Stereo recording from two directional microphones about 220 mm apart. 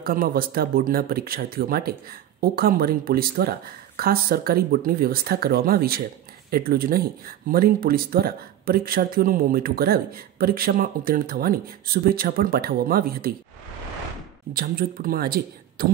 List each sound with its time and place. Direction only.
0.0 s speech: 40° right (ahead or behind)
14.5 s a man's voice: 40° right (ahead or behind)